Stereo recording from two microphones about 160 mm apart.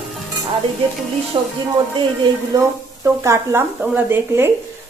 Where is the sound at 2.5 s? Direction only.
20° right (ahead or behind).